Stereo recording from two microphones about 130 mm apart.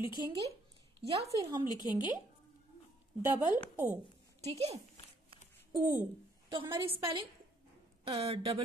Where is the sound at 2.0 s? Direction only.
35° left (ahead or behind).